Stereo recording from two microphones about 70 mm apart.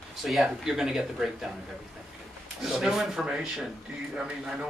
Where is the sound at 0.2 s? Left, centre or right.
Centre.